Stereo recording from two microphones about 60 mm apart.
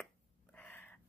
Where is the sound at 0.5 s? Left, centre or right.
Left.